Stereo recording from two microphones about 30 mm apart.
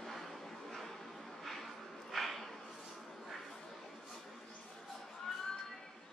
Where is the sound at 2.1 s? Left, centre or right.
Centre.